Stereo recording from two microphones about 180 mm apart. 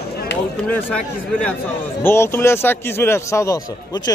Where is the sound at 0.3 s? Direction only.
75° left (ahead or behind).